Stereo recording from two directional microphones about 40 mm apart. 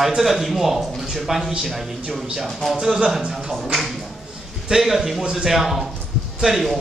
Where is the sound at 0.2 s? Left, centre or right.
Centre.